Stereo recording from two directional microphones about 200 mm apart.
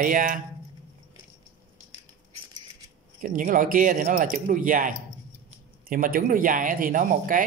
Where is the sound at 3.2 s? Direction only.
40° right (ahead or behind).